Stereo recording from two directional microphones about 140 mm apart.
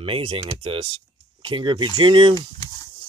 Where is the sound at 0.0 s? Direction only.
40° right (ahead or behind).